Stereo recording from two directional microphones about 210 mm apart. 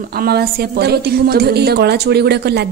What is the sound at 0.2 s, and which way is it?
Speech, 45° right (ahead or behind).